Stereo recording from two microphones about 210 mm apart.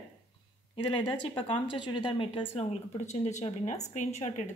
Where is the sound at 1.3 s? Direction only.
25° left (ahead or behind).